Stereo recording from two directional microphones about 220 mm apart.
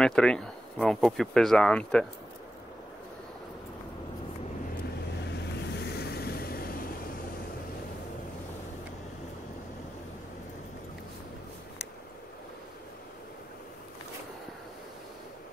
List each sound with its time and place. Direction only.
0.0 s speech: 5° left (ahead or behind)
5.4 s vehicle: 50° left (ahead or behind)